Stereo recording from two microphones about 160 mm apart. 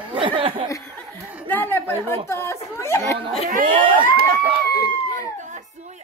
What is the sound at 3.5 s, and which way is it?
Speech, 60° right (ahead or behind).